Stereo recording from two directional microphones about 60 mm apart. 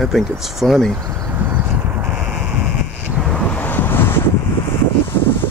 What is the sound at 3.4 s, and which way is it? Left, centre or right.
Wind noise, left.